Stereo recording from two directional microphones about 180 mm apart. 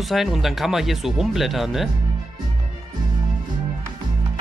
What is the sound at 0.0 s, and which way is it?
Speech, centre (ahead or behind).